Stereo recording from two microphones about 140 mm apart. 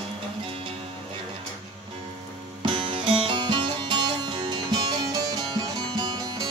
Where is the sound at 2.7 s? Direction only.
40° right (ahead or behind).